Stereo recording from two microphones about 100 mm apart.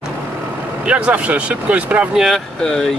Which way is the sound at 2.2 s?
5° left (ahead or behind).